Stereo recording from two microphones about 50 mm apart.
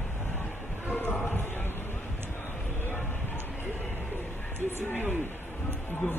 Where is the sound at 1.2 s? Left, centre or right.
Left.